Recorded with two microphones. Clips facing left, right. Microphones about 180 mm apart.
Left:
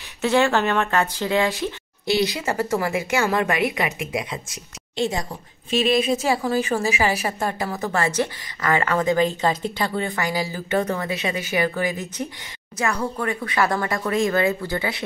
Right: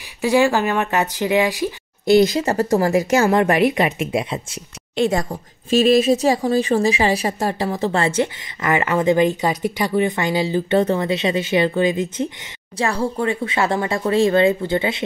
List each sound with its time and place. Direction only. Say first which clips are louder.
0.2 s speech: right 3 dB; 10° right (ahead or behind)
2.0 s a woman's voice: right 8 dB; 45° right (ahead or behind)
3.3 s speech: right 6 dB; 30° right (ahead or behind)
4.9 s a woman's voice: right 5 dB; 55° right (ahead or behind); by 15.0 s 25° right (ahead or behind)